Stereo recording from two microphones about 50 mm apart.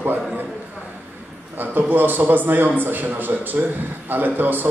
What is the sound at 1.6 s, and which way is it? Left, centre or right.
A man's voice, right.